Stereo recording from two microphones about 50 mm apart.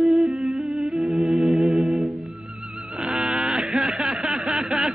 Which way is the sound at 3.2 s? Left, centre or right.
Centre.